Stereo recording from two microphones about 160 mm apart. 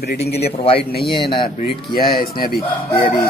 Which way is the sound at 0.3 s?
90° left.